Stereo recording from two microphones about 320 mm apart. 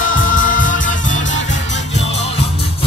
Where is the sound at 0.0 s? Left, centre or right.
Left.